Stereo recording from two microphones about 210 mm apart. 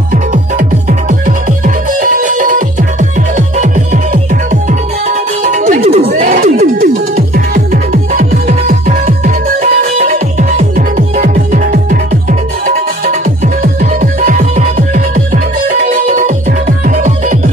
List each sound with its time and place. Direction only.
0.1 s music: 40° right (ahead or behind)
5.9 s a sound: 35° right (ahead or behind)
7.2 s music: 40° right (ahead or behind)